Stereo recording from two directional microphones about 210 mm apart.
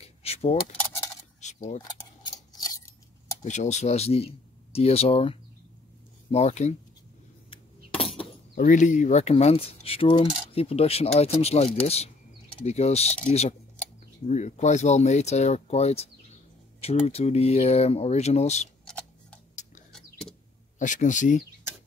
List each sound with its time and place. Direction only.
0.0 s keys jangling: 30° left (ahead or behind)
2.5 s keys jangling: 15° left (ahead or behind)
3.4 s speech: 35° left (ahead or behind)
4.7 s coin: 30° left (ahead or behind)
6.3 s speech: 30° left (ahead or behind)
7.5 s a sound: 25° left (ahead or behind)
8.5 s coin: 35° left (ahead or behind)
12.6 s speech: 30° left (ahead or behind)
16.8 s coin: 30° left (ahead or behind)
18.9 s tick: 5° left (ahead or behind)
19.9 s vehicle: 5° left (ahead or behind)
20.8 s speech: 35° left (ahead or behind)